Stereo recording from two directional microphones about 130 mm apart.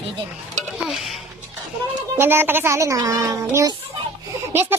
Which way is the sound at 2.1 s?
15° right (ahead or behind).